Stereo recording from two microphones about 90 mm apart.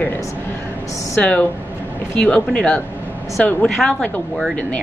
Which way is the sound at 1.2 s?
10° left (ahead or behind).